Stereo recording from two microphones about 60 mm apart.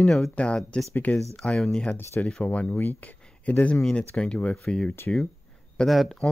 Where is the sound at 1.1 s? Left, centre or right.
Left.